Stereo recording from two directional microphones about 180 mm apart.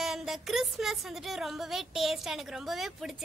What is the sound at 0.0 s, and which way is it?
A woman's voice, centre (ahead or behind).